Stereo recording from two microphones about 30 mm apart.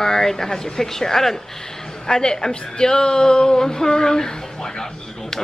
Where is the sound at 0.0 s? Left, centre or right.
Centre.